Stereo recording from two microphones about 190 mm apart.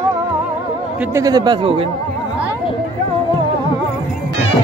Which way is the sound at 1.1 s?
20° right (ahead or behind).